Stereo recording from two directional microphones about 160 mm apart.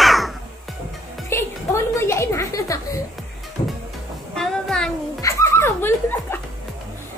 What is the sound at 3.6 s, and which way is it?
Music, 30° left (ahead or behind).